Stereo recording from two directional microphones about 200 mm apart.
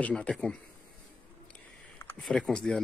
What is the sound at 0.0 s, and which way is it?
Speech, 5° left (ahead or behind).